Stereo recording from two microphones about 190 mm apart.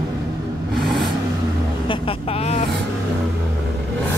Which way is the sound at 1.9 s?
30° left (ahead or behind).